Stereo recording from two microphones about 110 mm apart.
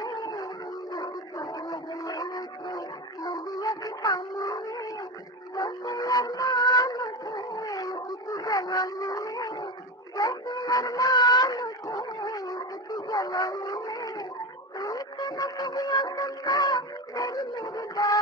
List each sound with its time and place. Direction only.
0.0 s howl: 40° left (ahead or behind)
0.9 s dog: 35° left (ahead or behind)
3.3 s music: 35° left (ahead or behind)
5.6 s music: 35° left (ahead or behind)
7.5 s howl: 35° left (ahead or behind)
10.1 s music: 35° left (ahead or behind)